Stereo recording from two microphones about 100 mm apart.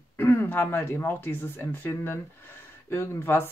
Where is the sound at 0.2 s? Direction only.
20° left (ahead or behind).